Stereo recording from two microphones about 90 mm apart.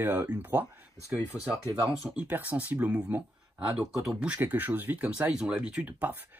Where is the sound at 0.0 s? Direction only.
25° right (ahead or behind).